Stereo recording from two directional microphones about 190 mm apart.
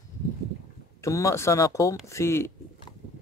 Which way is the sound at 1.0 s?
15° left (ahead or behind).